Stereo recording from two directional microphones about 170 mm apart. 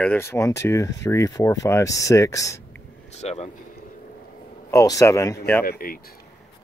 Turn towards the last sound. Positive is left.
turn(degrees=60)  # may be behind; listen again after turning